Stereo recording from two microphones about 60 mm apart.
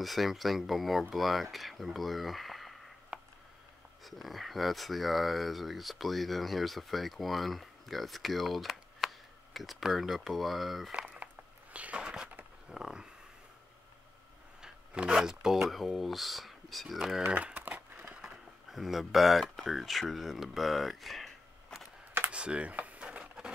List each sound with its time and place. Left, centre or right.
0.0 s speech: centre
3.1 s a sound: centre
4.0 s speech: centre
10.9 s speech: centre
11.7 s a sound: centre
12.7 s speech: centre
14.6 s speech: centre
17.3 s crumpling: right
18.7 s speech: centre
22.3 s a sound: centre